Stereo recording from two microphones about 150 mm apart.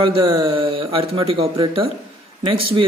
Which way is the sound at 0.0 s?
35° right (ahead or behind).